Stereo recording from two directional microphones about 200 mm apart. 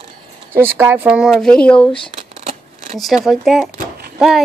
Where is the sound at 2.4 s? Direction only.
35° right (ahead or behind).